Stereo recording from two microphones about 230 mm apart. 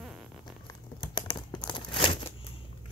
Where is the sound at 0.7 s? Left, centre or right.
Centre.